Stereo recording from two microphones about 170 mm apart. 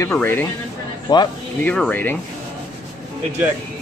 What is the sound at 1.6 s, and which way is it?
Speech, 10° left (ahead or behind).